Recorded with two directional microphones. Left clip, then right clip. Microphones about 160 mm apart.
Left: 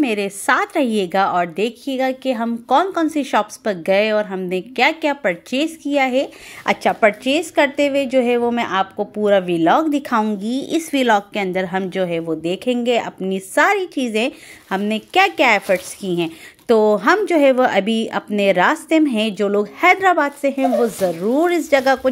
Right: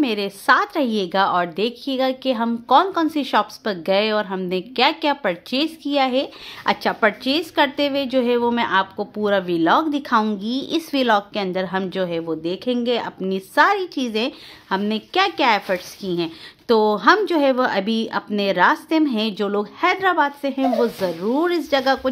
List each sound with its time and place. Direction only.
0.0 s a woman's voice: 10° left (ahead or behind)
10.4 s a woman's voice: 50° left (ahead or behind)
10.7 s a woman's voice: 15° left (ahead or behind)